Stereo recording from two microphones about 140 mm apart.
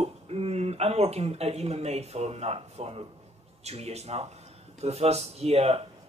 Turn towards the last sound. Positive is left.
turn(degrees=-50)  # may be behind; listen again after turning